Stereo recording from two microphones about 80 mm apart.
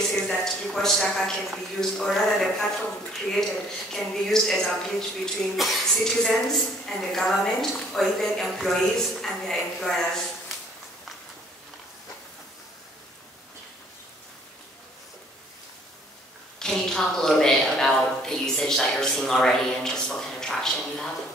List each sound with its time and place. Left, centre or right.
0.1 s a woman's voice: centre
16.5 s a woman's voice: centre